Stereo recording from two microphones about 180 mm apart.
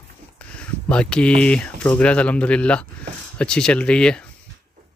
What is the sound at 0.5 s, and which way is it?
Speech, 5° left (ahead or behind).